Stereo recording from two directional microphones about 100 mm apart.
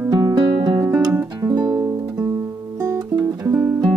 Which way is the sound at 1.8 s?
30° right (ahead or behind).